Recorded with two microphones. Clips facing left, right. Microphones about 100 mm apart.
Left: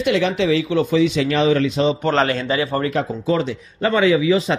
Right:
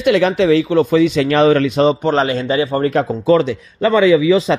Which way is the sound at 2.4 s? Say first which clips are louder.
Right 4 dB; 30° right (ahead or behind).